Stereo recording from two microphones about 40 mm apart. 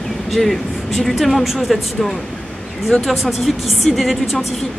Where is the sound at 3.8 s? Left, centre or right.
Centre.